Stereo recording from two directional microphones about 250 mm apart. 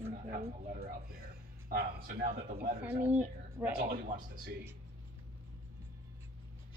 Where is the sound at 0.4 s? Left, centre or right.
Right.